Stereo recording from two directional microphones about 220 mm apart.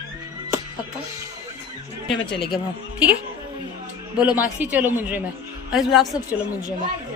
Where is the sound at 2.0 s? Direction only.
55° left (ahead or behind).